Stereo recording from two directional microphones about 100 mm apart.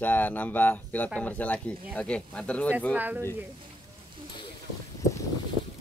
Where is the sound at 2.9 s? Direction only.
15° right (ahead or behind).